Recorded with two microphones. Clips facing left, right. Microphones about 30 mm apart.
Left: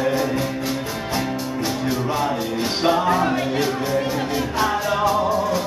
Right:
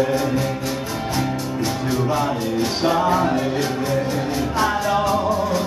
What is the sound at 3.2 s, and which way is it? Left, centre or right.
Music, centre.